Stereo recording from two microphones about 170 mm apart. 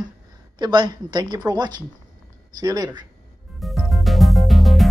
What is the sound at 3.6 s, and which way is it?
Music, centre (ahead or behind).